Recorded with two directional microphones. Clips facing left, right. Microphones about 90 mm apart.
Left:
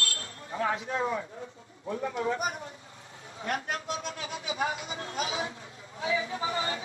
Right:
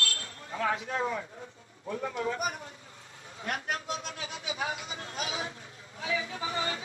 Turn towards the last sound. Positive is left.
turn(degrees=30)  # may be behind; listen again after turning